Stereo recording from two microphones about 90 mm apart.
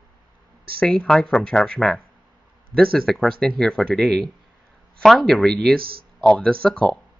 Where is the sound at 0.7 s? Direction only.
5° left (ahead or behind).